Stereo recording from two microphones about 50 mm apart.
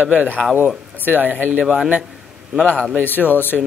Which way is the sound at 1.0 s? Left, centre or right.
Right.